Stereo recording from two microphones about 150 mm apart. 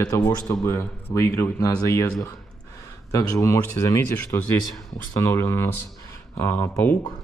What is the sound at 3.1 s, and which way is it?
A man's voice, 20° left (ahead or behind).